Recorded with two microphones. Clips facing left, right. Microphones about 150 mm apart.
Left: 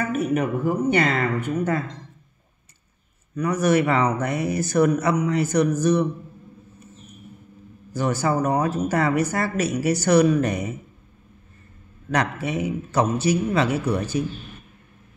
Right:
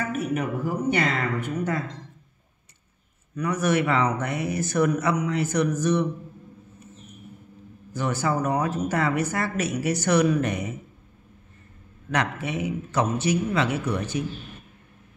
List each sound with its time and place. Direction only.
0.3 s speech: 55° left (ahead or behind)
3.3 s speech: 35° left (ahead or behind)
7.9 s speech: 35° left (ahead or behind)
12.1 s speech: 35° left (ahead or behind)